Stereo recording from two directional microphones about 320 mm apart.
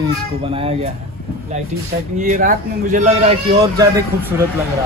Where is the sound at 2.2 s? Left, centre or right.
Right.